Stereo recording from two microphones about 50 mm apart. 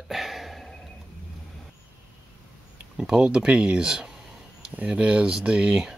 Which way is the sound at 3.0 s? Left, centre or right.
Centre.